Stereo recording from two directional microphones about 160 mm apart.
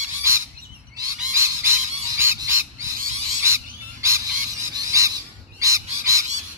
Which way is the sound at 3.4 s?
15° right (ahead or behind).